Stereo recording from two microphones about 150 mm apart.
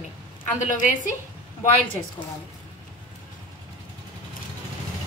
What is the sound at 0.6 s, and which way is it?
Speech, 55° left (ahead or behind).